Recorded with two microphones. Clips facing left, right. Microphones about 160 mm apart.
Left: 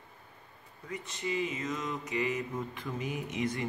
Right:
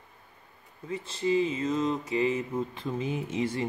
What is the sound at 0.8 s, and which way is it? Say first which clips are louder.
Speech: right 8 dB; 30° right (ahead or behind).